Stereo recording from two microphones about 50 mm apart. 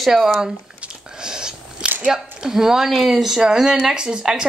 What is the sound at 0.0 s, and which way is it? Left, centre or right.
Speech, centre.